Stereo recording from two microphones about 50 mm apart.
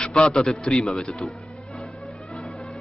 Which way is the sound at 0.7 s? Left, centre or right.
Left.